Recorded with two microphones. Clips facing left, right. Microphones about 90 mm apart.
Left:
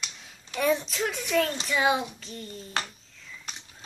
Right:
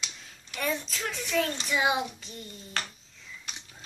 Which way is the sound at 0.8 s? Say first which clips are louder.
Left 5 dB; 20° left (ahead or behind).